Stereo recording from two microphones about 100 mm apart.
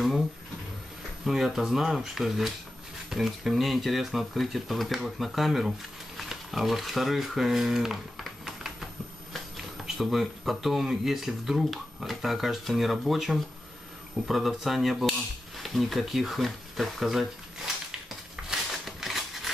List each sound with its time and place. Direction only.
1.2 s speech: 5° right (ahead or behind)
9.9 s speech: centre (ahead or behind)
18.3 s a sound: centre (ahead or behind)